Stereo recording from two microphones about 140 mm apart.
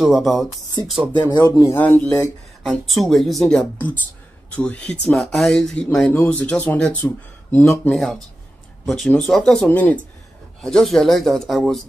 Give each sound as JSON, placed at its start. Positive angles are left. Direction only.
{"t": 0.0, "sound": "speech", "side_deg": 0}
{"t": 1.3, "sound": "speech", "side_deg": 25}
{"t": 2.6, "sound": "speech", "side_deg": 0}
{"t": 3.7, "sound": "speech", "side_deg": 15}
{"t": 7.9, "sound": "speech", "side_deg": 0}